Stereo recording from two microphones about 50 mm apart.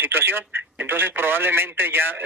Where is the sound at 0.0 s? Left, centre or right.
Right.